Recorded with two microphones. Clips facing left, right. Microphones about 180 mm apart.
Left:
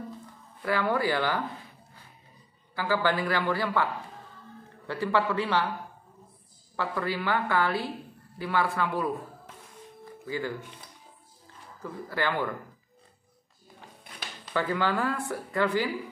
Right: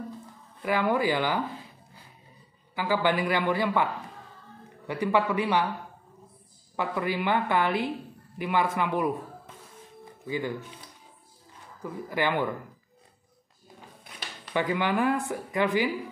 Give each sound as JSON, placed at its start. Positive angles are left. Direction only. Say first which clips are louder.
{"t": 0.6, "sound": "speech", "louder": "right 2 dB", "side_deg": -15}
{"t": 2.7, "sound": "speech", "louder": "right 1 dB", "side_deg": -15}
{"t": 6.8, "sound": "a woman's voice", "louder": "right 2 dB", "side_deg": -15}
{"t": 10.2, "sound": "speech", "louder": "right 2 dB", "side_deg": -20}
{"t": 11.8, "sound": "speech", "louder": "right 2 dB", "side_deg": -15}
{"t": 14.5, "sound": "speech", "louder": "right 1 dB", "side_deg": -15}